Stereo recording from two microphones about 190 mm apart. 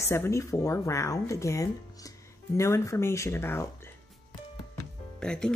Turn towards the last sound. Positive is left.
turn(degrees=5)  # may be behind; listen again after turning